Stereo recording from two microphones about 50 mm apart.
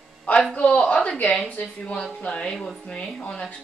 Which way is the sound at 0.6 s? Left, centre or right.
Left.